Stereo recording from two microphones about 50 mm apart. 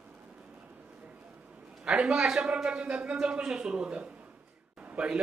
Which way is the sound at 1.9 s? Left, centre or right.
Centre.